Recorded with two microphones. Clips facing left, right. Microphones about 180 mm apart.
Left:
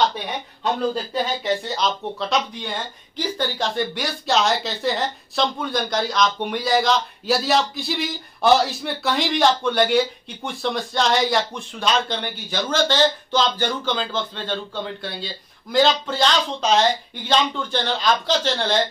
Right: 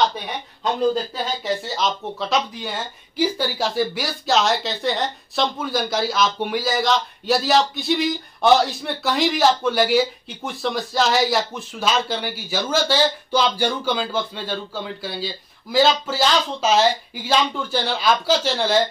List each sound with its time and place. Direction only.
1.1 s speech: centre (ahead or behind)